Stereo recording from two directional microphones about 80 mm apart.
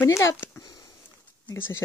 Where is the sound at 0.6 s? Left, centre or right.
Left.